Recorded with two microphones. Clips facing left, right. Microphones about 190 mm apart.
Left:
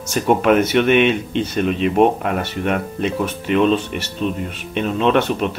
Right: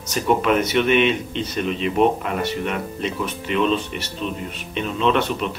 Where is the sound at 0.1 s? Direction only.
50° left (ahead or behind).